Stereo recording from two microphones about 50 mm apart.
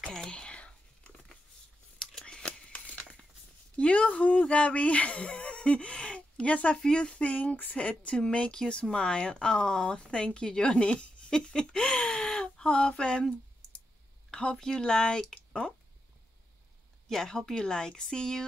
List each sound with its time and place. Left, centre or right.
0.0 s whispering: centre
2.2 s scissors: centre
2.7 s crumpling: left
3.7 s speech: left
14.3 s speech: centre
17.1 s speech: centre